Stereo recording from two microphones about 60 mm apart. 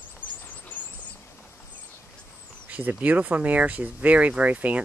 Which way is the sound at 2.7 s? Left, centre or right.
Right.